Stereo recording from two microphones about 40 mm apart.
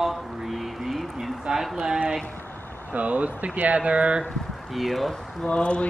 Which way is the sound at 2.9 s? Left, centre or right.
Right.